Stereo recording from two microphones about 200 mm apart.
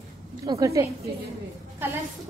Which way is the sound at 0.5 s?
15° right (ahead or behind).